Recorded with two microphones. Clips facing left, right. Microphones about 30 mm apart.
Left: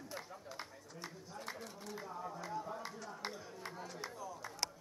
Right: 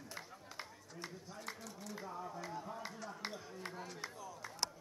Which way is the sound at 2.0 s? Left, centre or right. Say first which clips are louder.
Left 1 dB; centre.